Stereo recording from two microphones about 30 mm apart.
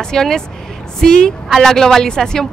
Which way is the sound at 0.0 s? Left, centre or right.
Centre.